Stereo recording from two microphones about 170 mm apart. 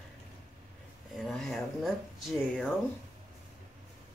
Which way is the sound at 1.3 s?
Centre (ahead or behind).